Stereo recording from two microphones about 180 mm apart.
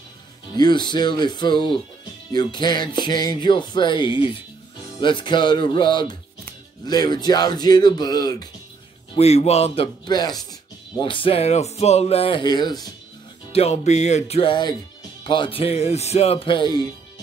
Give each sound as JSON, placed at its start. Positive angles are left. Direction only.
{"t": 0.6, "sound": "music", "side_deg": 25}
{"t": 9.1, "sound": "speech", "side_deg": 35}
{"t": 10.0, "sound": "music", "side_deg": 25}
{"t": 11.0, "sound": "speech", "side_deg": 30}
{"t": 13.5, "sound": "speech", "side_deg": 35}